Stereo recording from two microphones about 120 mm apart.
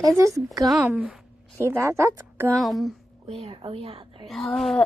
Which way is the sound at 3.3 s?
55° right (ahead or behind).